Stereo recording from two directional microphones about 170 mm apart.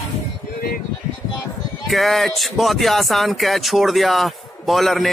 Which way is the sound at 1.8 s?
Centre (ahead or behind).